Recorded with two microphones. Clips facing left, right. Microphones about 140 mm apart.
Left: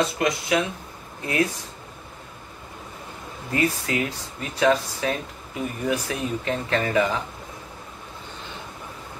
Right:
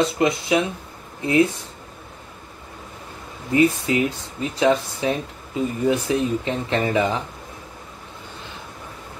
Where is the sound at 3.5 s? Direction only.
20° right (ahead or behind).